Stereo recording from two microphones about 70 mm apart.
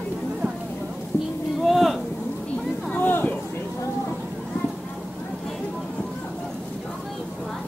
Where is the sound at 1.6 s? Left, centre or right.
Centre.